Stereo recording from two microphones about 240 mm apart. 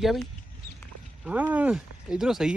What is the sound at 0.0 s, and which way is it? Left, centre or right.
Speech, centre.